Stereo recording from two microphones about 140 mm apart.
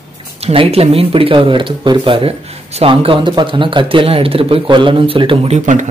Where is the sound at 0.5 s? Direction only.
45° right (ahead or behind).